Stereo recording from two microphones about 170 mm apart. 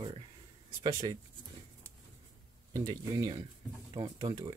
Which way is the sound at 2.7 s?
20° right (ahead or behind).